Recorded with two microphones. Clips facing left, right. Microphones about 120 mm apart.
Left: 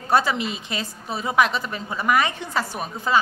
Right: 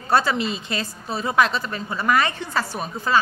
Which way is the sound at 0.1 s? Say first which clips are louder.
Right 1 dB; 15° left (ahead or behind).